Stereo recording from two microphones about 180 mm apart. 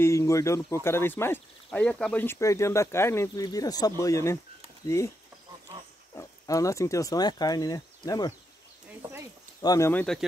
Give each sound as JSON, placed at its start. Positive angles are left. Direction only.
{"t": 0.0, "sound": "speech", "side_deg": 15}
{"t": 6.1, "sound": "speech", "side_deg": 20}
{"t": 9.6, "sound": "speech", "side_deg": 20}